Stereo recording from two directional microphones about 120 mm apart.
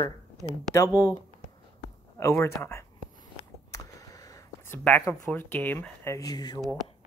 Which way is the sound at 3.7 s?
30° left (ahead or behind).